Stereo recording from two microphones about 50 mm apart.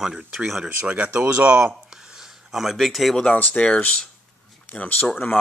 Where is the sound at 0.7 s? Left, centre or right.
Right.